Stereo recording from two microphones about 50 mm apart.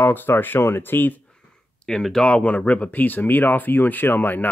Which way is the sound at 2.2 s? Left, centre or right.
Left.